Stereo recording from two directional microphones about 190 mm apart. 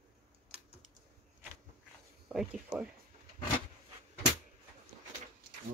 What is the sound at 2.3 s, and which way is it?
Speech, 5° right (ahead or behind).